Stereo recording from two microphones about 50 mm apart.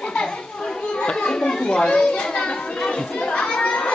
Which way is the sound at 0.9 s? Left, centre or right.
Centre.